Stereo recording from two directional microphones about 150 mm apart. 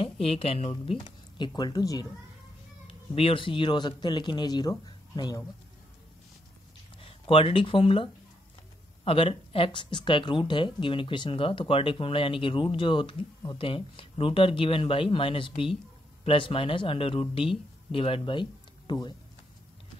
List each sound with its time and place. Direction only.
0.0 s speech: 40° left (ahead or behind)
0.9 s speech: 30° left (ahead or behind)
2.9 s a man's voice: 35° left (ahead or behind)
7.0 s speech: 40° left (ahead or behind)